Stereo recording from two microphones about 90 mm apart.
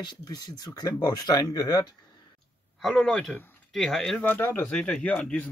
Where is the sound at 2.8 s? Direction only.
5° left (ahead or behind).